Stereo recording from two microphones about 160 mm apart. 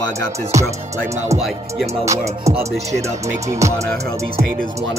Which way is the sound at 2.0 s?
20° right (ahead or behind).